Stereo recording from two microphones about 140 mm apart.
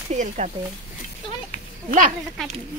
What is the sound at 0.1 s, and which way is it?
Speech, 60° right (ahead or behind).